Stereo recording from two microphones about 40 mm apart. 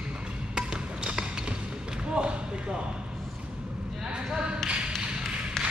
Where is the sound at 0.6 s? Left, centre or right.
Right.